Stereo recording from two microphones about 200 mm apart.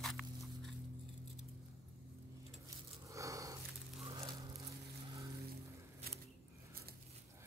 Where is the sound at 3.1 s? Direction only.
15° right (ahead or behind).